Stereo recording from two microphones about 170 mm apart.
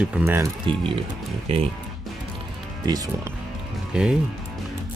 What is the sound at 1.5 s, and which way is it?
Speech, 35° right (ahead or behind).